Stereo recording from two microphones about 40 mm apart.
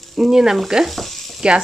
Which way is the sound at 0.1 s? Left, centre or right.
Centre.